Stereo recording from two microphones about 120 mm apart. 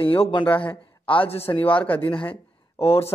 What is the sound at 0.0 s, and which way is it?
A man's voice, 45° left (ahead or behind).